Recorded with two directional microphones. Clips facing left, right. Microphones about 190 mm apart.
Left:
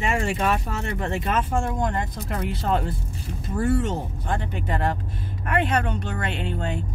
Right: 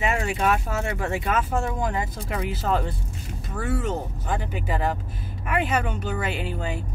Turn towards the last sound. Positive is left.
turn(degrees=-5)  # may be behind; listen again after turning